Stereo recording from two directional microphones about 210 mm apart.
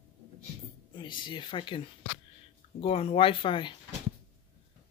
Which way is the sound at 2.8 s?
30° left (ahead or behind).